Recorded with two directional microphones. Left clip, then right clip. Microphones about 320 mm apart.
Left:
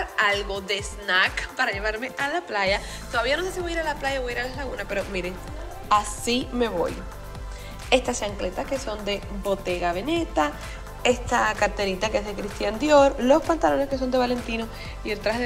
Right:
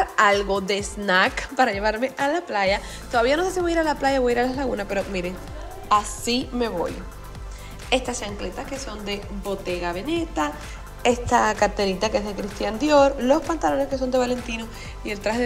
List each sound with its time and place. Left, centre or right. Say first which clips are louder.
0.0 s a woman's voice: right 5 dB; right